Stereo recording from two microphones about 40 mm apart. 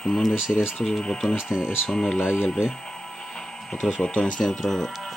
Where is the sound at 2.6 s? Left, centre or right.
Centre.